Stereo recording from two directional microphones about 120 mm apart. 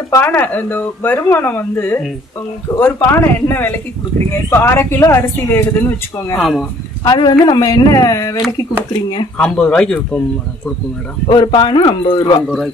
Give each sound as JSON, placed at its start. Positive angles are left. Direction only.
{"t": 0.1, "sound": "speech", "side_deg": 15}
{"t": 6.3, "sound": "speech", "side_deg": 0}
{"t": 7.1, "sound": "speech", "side_deg": 35}
{"t": 9.4, "sound": "speech", "side_deg": 5}
{"t": 11.2, "sound": "speech", "side_deg": 40}